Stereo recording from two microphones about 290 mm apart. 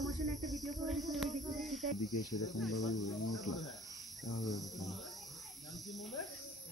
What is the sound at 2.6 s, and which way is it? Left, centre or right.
Speech, centre.